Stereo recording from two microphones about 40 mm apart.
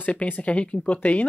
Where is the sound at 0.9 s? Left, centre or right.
Left.